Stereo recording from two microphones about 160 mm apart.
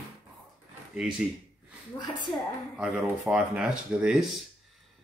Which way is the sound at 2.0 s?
25° left (ahead or behind).